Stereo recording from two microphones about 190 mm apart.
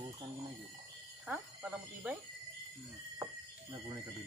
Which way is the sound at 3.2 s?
20° right (ahead or behind).